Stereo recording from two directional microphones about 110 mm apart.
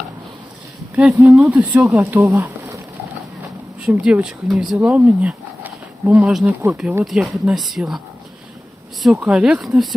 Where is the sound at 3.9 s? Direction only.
10° right (ahead or behind).